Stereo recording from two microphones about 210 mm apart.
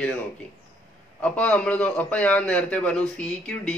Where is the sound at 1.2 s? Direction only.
5° left (ahead or behind).